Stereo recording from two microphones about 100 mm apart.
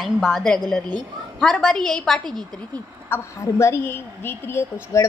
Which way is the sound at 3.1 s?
25° left (ahead or behind).